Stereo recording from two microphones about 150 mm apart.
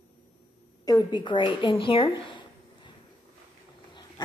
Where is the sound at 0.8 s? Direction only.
30° left (ahead or behind).